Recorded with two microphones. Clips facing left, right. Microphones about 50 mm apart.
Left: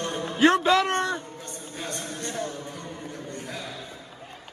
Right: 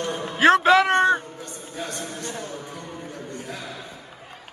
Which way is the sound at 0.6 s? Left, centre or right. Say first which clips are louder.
Right 6 dB; right.